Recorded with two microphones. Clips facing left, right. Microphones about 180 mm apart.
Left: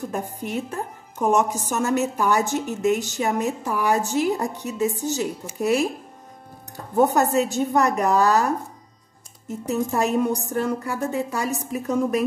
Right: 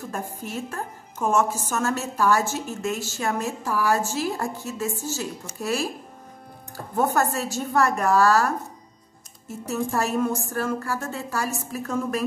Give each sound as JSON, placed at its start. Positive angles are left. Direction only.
{"t": 0.1, "sound": "a woman's voice", "side_deg": 20}
{"t": 7.0, "sound": "a woman's voice", "side_deg": 20}
{"t": 9.8, "sound": "a woman's voice", "side_deg": 20}